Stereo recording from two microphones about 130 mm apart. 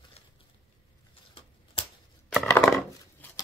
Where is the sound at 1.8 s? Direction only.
45° left (ahead or behind).